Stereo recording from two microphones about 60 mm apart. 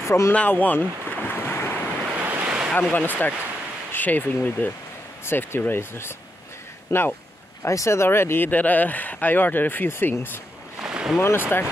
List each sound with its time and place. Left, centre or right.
0.0 s speech: left
0.5 s boat: left
2.1 s waves: right
2.7 s speech: left
6.9 s speech: left
8.5 s speech: left
10.8 s a sound: centre
11.2 s speech: left